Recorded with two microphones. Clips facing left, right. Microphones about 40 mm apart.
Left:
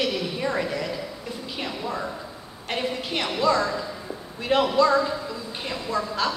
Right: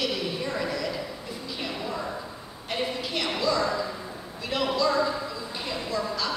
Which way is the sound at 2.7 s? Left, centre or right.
Left.